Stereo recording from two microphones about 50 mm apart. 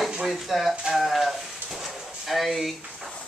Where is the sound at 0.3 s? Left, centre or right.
Centre.